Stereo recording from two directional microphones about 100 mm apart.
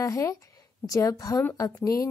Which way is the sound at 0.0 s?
30° left (ahead or behind).